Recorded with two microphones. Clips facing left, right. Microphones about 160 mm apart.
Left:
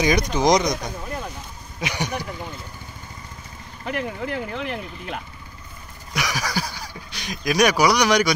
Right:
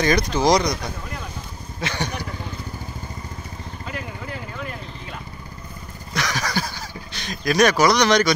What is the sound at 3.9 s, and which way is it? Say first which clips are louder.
Vehicle: left 7 dB; 70° left (ahead or behind).